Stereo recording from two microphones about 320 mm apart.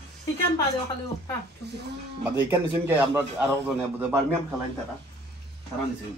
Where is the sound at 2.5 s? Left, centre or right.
Centre.